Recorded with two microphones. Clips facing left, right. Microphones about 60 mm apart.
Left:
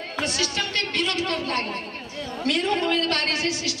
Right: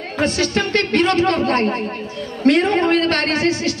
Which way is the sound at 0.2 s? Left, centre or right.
Right.